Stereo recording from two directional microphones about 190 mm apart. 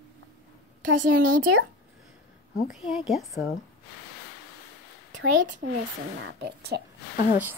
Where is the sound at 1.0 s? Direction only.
45° right (ahead or behind).